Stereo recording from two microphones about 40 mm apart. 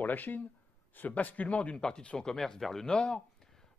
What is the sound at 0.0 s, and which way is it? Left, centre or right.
Speech, left.